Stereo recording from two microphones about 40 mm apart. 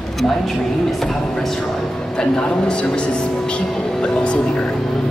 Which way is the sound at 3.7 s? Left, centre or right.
Centre.